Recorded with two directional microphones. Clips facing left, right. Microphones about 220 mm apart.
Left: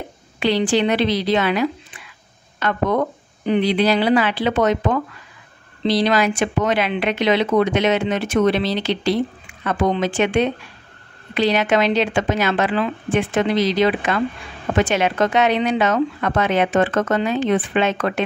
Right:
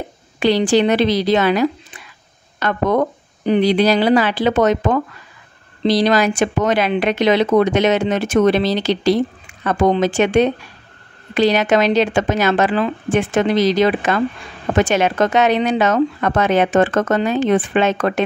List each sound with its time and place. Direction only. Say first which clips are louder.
0.4 s speech: right 4 dB; 40° right (ahead or behind)